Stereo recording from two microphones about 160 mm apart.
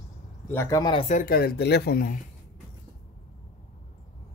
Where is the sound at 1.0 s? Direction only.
45° left (ahead or behind).